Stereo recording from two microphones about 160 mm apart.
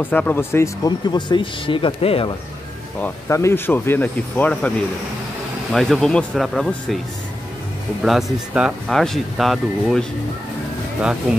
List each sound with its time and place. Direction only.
0.0 s speech: 10° left (ahead or behind)
1.1 s speech: 30° left (ahead or behind)
3.0 s speech: 20° left (ahead or behind); by 7.0 s centre (ahead or behind)
8.0 s speech: centre (ahead or behind)